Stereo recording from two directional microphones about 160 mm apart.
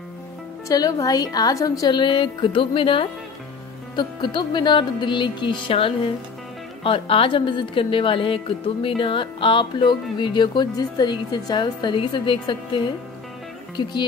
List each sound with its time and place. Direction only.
0.7 s a woman's voice: 20° left (ahead or behind)